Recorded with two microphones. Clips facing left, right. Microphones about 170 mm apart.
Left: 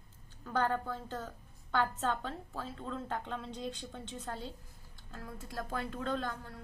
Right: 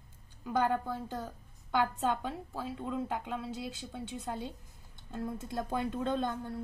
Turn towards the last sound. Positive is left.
turn(degrees=-25)  # may be behind; listen again after turning